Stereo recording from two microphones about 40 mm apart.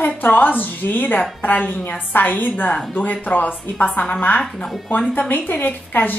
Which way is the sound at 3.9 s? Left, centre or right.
Left.